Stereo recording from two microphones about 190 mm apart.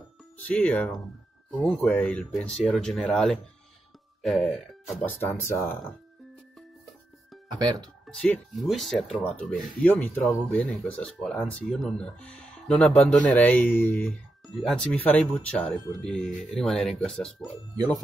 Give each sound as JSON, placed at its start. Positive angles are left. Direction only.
{"t": 0.4, "sound": "speech", "side_deg": 5}
{"t": 7.5, "sound": "speech", "side_deg": -20}
{"t": 8.1, "sound": "speech", "side_deg": 0}